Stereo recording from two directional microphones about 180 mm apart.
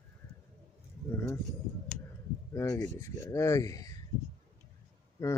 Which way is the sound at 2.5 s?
15° left (ahead or behind).